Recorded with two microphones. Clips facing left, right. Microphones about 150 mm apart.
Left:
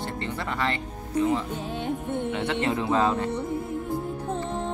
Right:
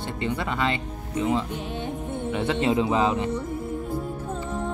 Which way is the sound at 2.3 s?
15° right (ahead or behind).